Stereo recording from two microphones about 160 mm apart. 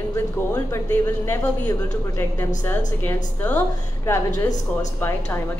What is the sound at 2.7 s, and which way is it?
A woman's voice, 15° left (ahead or behind).